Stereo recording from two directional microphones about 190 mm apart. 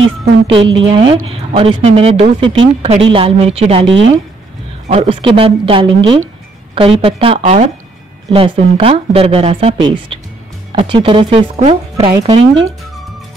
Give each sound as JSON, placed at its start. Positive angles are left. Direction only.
{"t": 0.2, "sound": "a woman's voice", "side_deg": -25}
{"t": 4.8, "sound": "speech", "side_deg": -30}
{"t": 12.1, "sound": "speech", "side_deg": -20}